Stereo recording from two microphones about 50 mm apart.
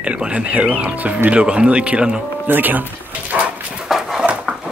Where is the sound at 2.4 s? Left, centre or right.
Right.